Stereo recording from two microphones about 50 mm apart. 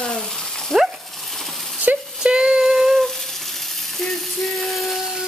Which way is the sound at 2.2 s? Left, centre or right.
Centre.